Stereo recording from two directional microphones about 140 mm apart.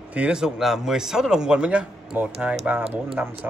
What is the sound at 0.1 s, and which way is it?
A man's voice, 5° right (ahead or behind).